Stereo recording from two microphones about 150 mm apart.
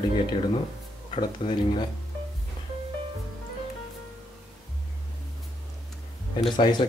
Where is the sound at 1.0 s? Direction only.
35° left (ahead or behind).